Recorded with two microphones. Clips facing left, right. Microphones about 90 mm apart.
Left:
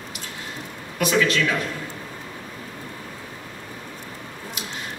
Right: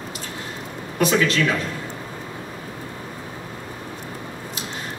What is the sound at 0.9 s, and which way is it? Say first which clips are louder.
Speech: right 1 dB; 30° right (ahead or behind).